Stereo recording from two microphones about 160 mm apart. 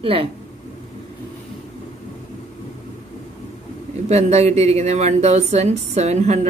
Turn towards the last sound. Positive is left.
turn(degrees=-45)  # may be behind; listen again after turning